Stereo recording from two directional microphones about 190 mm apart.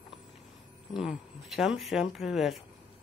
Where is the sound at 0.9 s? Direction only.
Centre (ahead or behind).